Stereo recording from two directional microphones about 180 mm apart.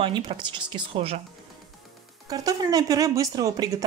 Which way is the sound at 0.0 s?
30° right (ahead or behind).